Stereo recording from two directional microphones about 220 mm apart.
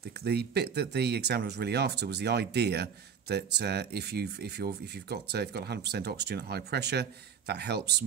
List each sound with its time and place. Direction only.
0.2 s speech: 50° right (ahead or behind)